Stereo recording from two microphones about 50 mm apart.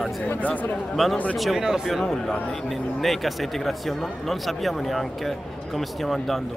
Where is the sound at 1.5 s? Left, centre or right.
Centre.